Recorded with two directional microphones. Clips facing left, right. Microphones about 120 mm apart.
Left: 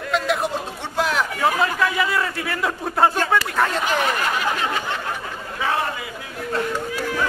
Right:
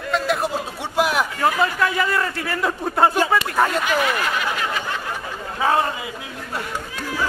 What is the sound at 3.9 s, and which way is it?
Speech, 35° left (ahead or behind).